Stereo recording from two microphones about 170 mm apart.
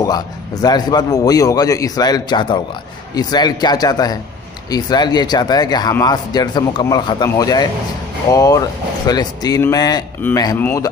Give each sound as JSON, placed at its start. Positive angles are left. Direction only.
{"t": 0.0, "sound": "speech", "side_deg": 20}